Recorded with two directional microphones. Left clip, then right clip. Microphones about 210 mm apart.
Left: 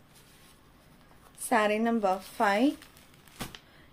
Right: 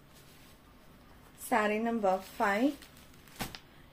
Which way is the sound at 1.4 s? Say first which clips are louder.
Left 4 dB; 45° left (ahead or behind).